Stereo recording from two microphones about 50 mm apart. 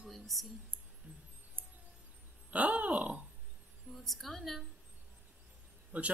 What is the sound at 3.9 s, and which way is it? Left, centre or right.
Speech, centre.